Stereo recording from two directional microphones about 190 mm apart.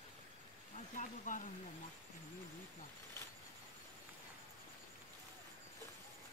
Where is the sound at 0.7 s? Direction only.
40° left (ahead or behind).